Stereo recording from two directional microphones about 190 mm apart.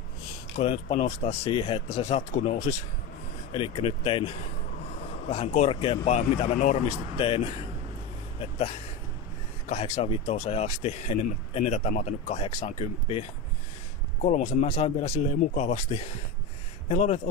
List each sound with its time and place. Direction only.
0.6 s speech: 35° left (ahead or behind)
9.7 s speech: 35° left (ahead or behind)